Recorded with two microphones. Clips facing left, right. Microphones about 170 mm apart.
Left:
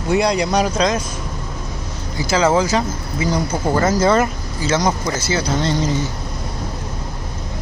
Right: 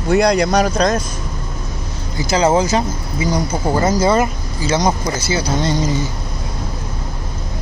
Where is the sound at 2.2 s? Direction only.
20° right (ahead or behind).